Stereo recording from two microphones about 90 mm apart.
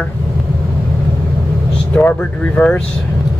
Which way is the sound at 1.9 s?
15° left (ahead or behind).